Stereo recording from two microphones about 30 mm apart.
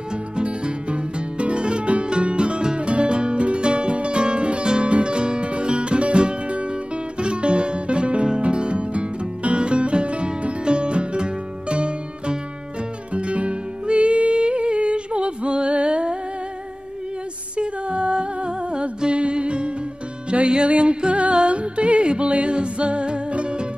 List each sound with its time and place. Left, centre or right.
0.4 s music: right
17.6 s music: right